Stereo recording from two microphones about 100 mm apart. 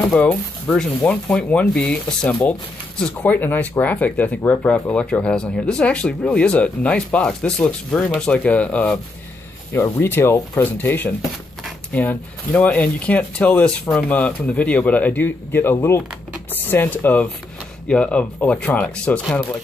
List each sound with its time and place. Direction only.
0.1 s speech: 10° left (ahead or behind)
9.7 s speech: 25° left (ahead or behind)